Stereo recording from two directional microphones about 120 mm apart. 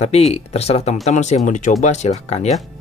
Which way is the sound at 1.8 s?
70° left (ahead or behind).